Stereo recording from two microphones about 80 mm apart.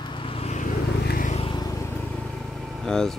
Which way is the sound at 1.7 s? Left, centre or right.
Left.